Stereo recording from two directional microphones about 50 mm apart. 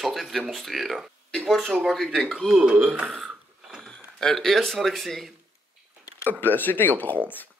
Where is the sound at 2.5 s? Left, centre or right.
Centre.